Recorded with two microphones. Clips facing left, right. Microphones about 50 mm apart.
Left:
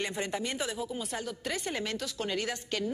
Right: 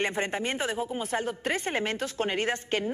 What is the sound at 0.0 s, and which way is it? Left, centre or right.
A woman's voice, right.